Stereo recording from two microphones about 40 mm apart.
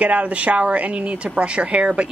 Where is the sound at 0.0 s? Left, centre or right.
Right.